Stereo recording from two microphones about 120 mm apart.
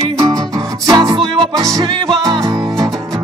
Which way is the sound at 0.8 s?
30° right (ahead or behind).